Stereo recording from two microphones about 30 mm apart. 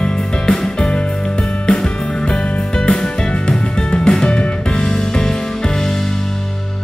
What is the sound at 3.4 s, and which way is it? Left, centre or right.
Music, left.